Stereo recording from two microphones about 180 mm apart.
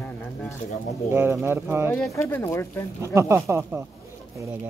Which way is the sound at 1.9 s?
5° left (ahead or behind).